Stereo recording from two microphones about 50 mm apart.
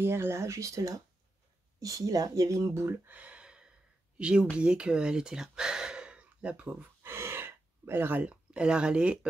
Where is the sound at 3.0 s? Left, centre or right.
Right.